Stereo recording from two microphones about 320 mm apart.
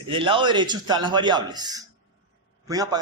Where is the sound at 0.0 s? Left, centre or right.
Centre.